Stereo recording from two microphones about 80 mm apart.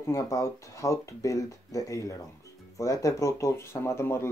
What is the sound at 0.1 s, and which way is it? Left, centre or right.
Speech, left.